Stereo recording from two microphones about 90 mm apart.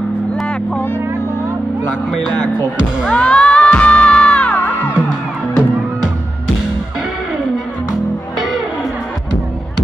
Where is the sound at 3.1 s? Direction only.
10° left (ahead or behind).